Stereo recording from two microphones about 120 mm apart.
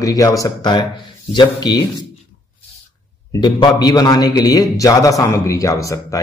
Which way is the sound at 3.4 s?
35° left (ahead or behind).